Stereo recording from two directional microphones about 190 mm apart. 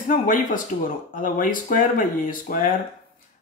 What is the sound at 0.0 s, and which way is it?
Speech, 45° left (ahead or behind).